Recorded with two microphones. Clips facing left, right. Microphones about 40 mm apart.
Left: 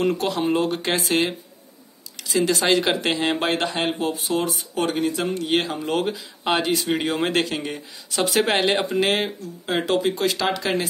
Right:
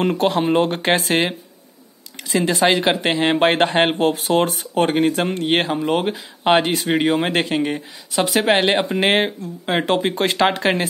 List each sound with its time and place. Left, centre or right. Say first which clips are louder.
0.0 s speech: right 4 dB; right
5.9 s speech: right 4 dB; right
8.1 s speech: right 3 dB; centre
8.5 s speech: right 3 dB; right